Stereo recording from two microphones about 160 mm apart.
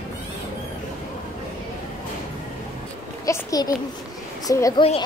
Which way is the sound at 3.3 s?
20° left (ahead or behind).